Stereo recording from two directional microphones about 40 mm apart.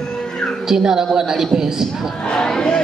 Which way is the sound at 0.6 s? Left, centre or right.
Centre.